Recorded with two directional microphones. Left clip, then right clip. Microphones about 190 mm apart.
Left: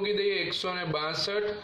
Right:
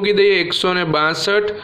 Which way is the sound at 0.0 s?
45° right (ahead or behind).